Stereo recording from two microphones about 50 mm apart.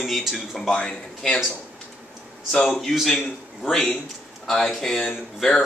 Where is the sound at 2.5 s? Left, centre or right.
Centre.